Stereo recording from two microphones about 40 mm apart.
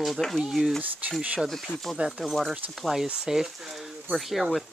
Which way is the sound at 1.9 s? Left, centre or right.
Centre.